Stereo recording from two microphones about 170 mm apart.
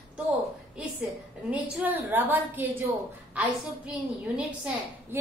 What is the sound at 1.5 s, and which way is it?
A woman's voice, 10° right (ahead or behind).